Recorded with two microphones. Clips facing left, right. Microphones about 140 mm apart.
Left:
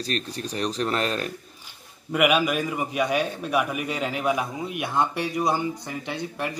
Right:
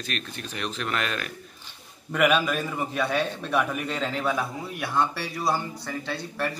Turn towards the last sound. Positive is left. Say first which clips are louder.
# even
turn(degrees=15)  # may be behind; listen again after turning